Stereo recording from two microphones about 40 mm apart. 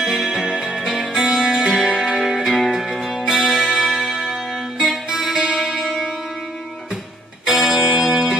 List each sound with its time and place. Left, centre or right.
0.0 s music: centre
1.9 s music: centre
2.1 s music: centre
5.3 s music: centre
5.6 s music: centre
7.4 s music: centre